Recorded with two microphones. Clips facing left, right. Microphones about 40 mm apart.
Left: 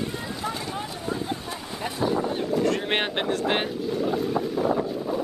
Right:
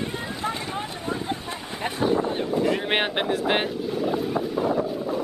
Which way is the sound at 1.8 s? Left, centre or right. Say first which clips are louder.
Right 2 dB; right.